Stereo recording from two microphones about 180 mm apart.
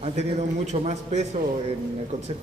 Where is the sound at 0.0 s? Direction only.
40° right (ahead or behind).